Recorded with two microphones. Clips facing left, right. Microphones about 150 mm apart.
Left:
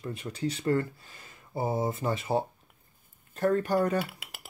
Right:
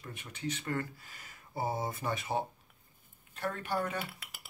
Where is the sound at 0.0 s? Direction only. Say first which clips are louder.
Left 7 dB; 35° left (ahead or behind).